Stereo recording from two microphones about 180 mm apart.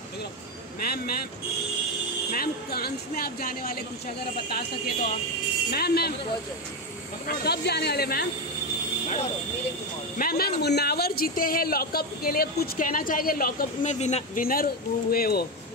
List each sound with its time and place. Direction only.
0.7 s speech: 60° left (ahead or behind)
2.3 s speech: 55° left (ahead or behind)
7.2 s speech: 65° left (ahead or behind)
10.1 s speech: 55° left (ahead or behind)
13.9 s speech: 40° left (ahead or behind); by 15.4 s 55° left (ahead or behind)